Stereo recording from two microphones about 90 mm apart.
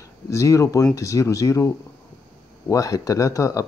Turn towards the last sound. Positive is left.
turn(degrees=35)  # may be behind; listen again after turning